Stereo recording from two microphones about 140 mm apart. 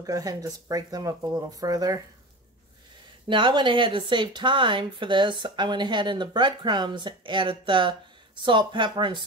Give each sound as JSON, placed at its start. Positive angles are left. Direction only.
{"t": 0.0, "sound": "speech", "side_deg": -25}
{"t": 3.3, "sound": "speech", "side_deg": -35}